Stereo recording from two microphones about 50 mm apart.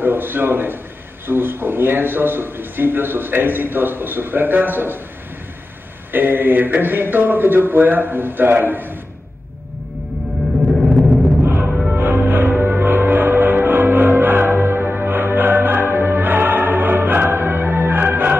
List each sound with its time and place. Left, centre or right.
0.0 s a man's voice: right
6.1 s a man's voice: right
11.4 s music: right